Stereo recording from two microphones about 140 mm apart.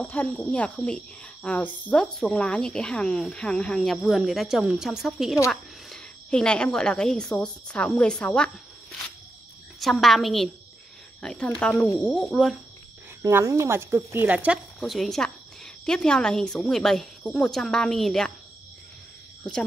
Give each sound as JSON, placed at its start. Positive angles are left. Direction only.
{"t": 0.0, "sound": "a woman's voice", "side_deg": 10}
{"t": 9.8, "sound": "speech", "side_deg": 0}
{"t": 13.2, "sound": "speech", "side_deg": -20}
{"t": 14.8, "sound": "a woman's voice", "side_deg": 0}